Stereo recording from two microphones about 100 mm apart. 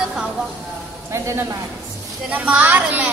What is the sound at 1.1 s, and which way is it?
Speech, 30° right (ahead or behind).